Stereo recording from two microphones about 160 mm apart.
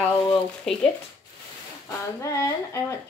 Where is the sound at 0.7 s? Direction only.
5° left (ahead or behind).